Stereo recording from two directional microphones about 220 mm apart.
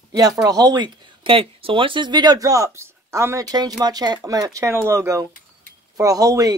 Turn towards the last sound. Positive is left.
turn(degrees=-15)  # may be behind; listen again after turning